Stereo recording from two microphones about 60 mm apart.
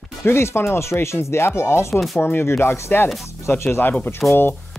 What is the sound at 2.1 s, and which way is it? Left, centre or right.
Speech, left.